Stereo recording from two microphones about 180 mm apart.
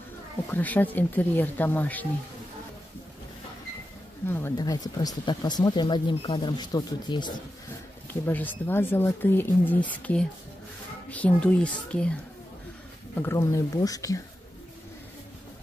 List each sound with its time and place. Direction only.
0.5 s speech: 10° left (ahead or behind)
4.3 s speech: 15° left (ahead or behind)
8.1 s speech: 10° left (ahead or behind)